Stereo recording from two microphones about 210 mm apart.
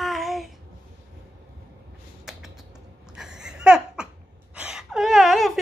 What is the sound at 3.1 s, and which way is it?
Laughter, 5° right (ahead or behind).